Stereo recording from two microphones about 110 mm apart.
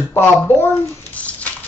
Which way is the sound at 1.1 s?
15° left (ahead or behind).